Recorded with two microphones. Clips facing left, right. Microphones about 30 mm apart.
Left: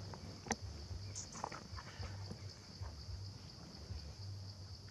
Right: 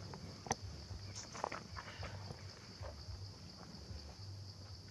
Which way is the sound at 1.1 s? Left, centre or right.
Right.